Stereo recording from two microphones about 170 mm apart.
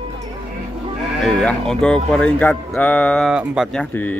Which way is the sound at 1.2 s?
5° left (ahead or behind).